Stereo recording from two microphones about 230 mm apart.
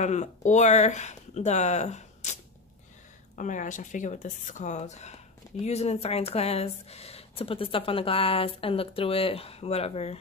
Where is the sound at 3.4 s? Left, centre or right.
Left.